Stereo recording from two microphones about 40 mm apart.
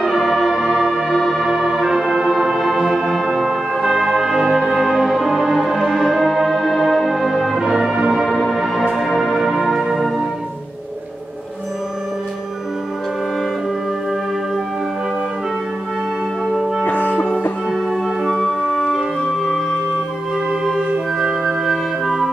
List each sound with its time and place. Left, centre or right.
0.0 s music: centre
1.1 s music: centre
1.4 s music: centre
16.8 s music: left
17.6 s music: centre
21.5 s music: centre